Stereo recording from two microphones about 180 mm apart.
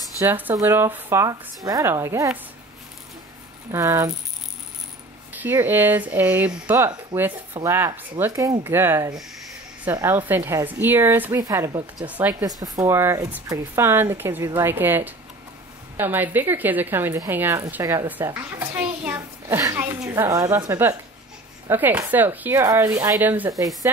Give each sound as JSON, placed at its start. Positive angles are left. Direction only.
{"t": 0.2, "sound": "a woman's voice", "side_deg": -10}
{"t": 3.7, "sound": "a woman's voice", "side_deg": -15}
{"t": 5.3, "sound": "a woman's voice", "side_deg": -10}
{"t": 12.1, "sound": "a woman's voice", "side_deg": -10}
{"t": 12.4, "sound": "a woman's voice", "side_deg": -20}